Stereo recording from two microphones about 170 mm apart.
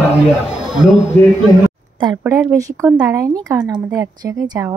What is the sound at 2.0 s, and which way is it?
Speech, 20° right (ahead or behind).